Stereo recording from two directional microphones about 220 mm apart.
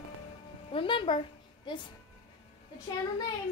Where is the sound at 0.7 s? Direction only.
25° left (ahead or behind).